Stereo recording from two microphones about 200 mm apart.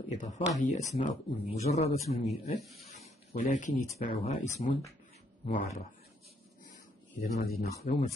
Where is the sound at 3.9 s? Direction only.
30° left (ahead or behind).